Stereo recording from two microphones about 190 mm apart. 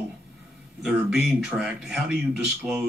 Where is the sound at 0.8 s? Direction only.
5° right (ahead or behind).